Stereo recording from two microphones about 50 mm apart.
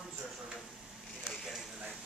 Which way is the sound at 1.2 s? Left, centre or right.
Centre.